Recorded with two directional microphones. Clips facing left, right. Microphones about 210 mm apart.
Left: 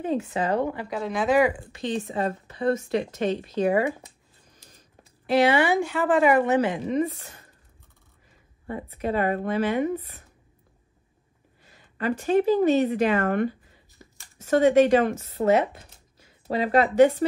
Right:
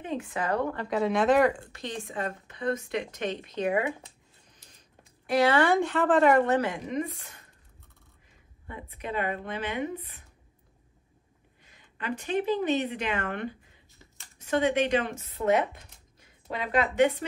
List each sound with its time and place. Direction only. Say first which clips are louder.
0.2 s speech: left 4 dB; 25° left (ahead or behind)
0.8 s speech: right 1 dB; centre (ahead or behind)
1.7 s speech: left 8 dB; 20° left (ahead or behind)
5.2 s speech: left 3 dB; 25° left (ahead or behind)
5.6 s speech: left 1 dB; 5° left (ahead or behind)
8.6 s speech: left 8 dB; 40° left (ahead or behind)
11.6 s a woman's voice: left 8 dB; 40° left (ahead or behind)